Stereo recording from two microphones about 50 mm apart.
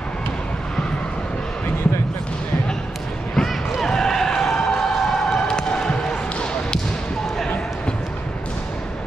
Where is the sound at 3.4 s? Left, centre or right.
Centre.